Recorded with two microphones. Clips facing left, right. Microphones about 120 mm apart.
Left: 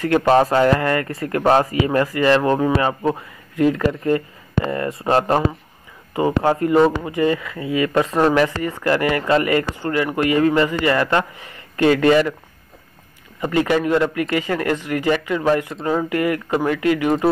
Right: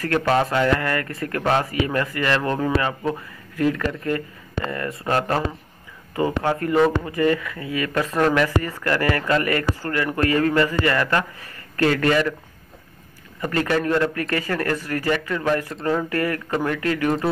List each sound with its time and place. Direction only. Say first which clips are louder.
0.0 s speech: left 5 dB; 20° left (ahead or behind)
0.3 s speech: left 5 dB; 30° left (ahead or behind)
13.4 s a man's voice: left 4 dB; 15° left (ahead or behind)